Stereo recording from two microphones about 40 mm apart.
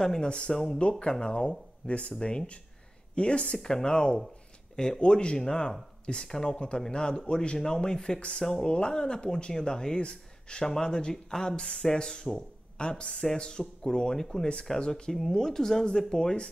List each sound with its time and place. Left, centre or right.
0.0 s speech: centre